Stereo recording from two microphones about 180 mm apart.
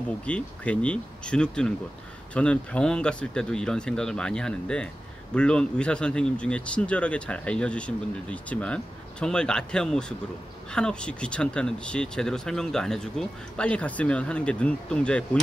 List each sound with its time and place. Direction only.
0.2 s speech: 5° left (ahead or behind)